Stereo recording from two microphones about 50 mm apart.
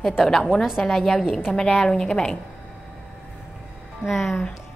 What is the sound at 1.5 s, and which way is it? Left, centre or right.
Speech, centre.